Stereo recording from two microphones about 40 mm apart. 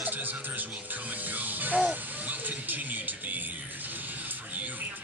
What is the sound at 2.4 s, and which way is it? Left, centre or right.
Music, right.